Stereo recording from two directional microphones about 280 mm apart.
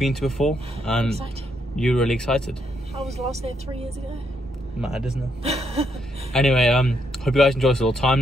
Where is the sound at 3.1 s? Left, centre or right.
Right.